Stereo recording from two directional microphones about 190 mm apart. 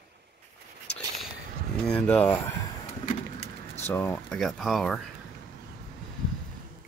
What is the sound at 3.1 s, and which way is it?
Bird, 40° left (ahead or behind).